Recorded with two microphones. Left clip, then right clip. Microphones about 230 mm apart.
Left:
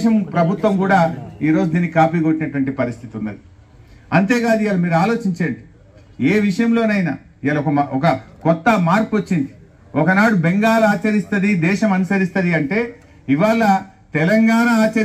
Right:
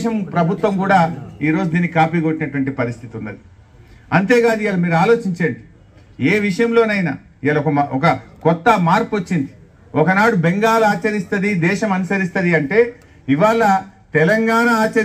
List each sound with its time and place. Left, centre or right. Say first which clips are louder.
0.0 s a man's voice: left 1 dB; right